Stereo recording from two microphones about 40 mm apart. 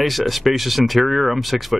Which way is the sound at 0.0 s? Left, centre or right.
Centre.